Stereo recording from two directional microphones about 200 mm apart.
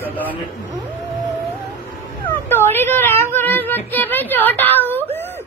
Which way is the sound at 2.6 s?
10° left (ahead or behind).